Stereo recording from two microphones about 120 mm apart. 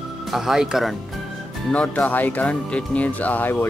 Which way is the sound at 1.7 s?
10° left (ahead or behind).